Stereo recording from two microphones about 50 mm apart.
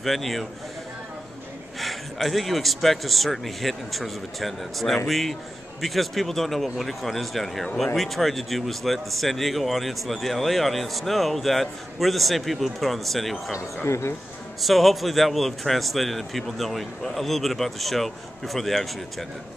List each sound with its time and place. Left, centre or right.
0.0 s speech: centre
1.8 s speech: centre
13.8 s speech: left
14.6 s speech: centre